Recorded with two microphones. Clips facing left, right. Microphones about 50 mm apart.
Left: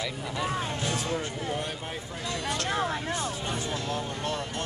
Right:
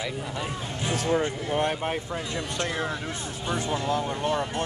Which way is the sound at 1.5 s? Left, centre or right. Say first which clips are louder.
Right 7 dB; right.